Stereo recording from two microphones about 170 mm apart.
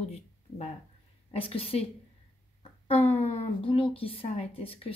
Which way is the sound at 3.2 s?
40° left (ahead or behind).